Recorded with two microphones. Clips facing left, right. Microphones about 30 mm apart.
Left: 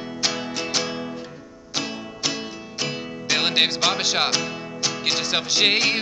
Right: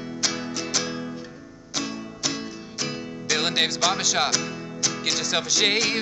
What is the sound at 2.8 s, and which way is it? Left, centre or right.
Music, left.